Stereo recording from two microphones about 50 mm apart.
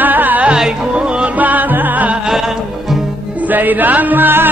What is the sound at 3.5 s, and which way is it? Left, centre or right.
Music, right.